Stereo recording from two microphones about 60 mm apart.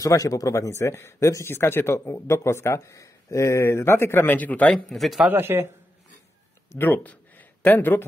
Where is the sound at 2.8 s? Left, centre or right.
Left.